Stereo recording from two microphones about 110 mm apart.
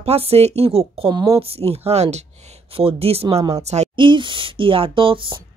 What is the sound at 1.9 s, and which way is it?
Speech, 80° right.